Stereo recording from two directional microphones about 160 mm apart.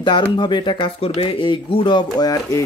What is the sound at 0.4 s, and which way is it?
Speech, 30° left (ahead or behind).